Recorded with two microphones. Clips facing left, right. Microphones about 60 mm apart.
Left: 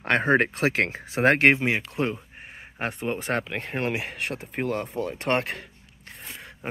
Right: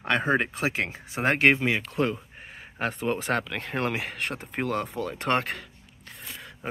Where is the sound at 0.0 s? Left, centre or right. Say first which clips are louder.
Left 3 dB; left.